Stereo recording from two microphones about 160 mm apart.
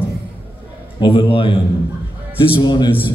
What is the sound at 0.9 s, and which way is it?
A man's voice, 30° left (ahead or behind).